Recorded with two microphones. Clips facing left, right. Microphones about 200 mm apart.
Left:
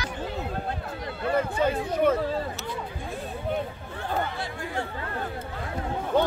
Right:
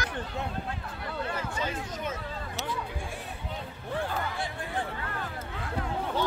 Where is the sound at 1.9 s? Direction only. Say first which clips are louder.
Left 13 dB; 60° left (ahead or behind).